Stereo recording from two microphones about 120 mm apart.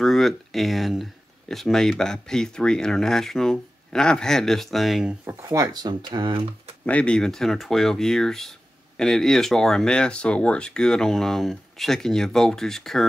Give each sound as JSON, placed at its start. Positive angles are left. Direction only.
{"t": 0.0, "sound": "speech", "side_deg": 0}
{"t": 5.4, "sound": "speech", "side_deg": -25}
{"t": 6.9, "sound": "speech", "side_deg": 10}